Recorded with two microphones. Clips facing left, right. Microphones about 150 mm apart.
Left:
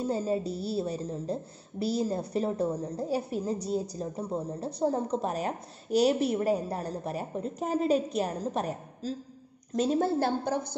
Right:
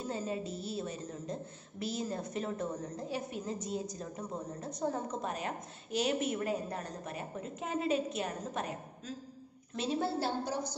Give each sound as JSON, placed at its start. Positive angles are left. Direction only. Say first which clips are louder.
{"t": 0.0, "sound": "a woman's voice", "louder": "left 8 dB", "side_deg": 35}
{"t": 9.7, "sound": "a woman's voice", "louder": "left 7 dB", "side_deg": 45}